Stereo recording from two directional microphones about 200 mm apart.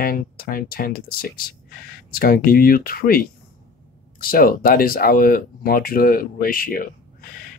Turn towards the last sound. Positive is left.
turn(degrees=45)  # may be behind; listen again after turning